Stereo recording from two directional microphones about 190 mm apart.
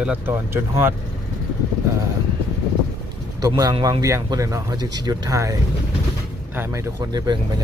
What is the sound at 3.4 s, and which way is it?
Speech, 20° right (ahead or behind).